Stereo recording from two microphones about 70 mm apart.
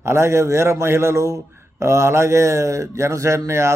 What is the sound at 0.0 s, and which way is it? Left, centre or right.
A man's voice, right.